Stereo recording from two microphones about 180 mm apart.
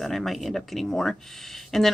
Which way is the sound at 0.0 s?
Centre (ahead or behind).